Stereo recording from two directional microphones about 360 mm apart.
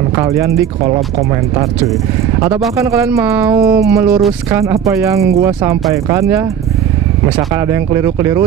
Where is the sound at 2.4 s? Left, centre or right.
Centre.